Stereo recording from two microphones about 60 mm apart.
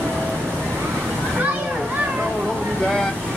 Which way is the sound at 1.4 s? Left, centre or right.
Right.